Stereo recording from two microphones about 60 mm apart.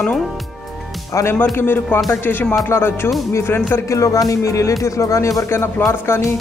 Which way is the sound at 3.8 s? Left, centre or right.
Left.